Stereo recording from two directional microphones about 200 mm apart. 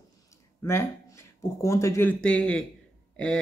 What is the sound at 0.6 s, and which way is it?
Speech, 10° left (ahead or behind).